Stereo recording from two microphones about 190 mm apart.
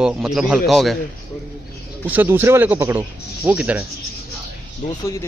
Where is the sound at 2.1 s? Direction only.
10° right (ahead or behind).